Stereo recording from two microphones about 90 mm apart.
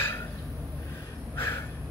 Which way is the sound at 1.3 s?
25° left (ahead or behind).